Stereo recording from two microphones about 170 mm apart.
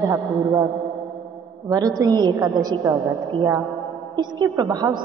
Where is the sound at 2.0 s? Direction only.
25° right (ahead or behind).